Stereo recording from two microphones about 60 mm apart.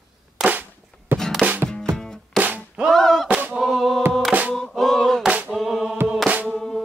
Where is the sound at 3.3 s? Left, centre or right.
Right.